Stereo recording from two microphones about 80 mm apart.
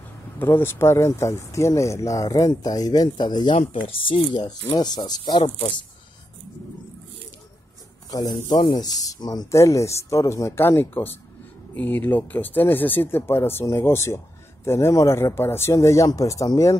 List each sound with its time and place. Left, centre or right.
0.5 s speech: left
8.1 s speech: left
9.5 s speech: left